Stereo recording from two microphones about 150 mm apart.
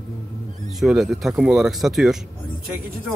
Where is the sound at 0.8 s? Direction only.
Centre (ahead or behind).